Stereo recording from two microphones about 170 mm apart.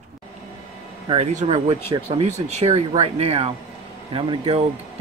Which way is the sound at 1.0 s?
40° right (ahead or behind).